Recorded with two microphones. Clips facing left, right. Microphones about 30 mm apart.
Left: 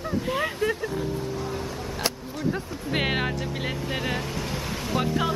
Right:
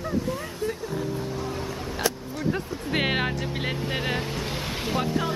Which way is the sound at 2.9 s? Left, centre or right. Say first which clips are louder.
Right 1 dB; centre.